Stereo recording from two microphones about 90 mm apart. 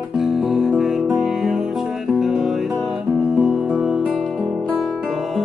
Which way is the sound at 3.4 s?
15° right (ahead or behind).